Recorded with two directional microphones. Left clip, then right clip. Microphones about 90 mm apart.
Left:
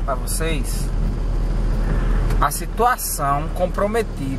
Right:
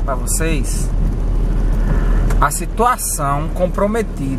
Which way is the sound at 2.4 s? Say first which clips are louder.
Right 3 dB; 15° right (ahead or behind).